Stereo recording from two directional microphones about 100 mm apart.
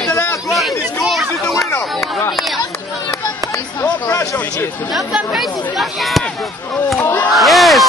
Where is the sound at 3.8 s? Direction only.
35° left (ahead or behind).